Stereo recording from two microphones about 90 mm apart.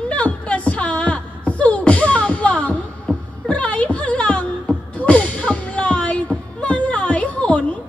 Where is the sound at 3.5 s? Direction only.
15° left (ahead or behind).